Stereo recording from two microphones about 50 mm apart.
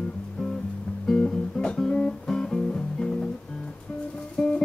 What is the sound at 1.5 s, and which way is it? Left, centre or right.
Music, centre.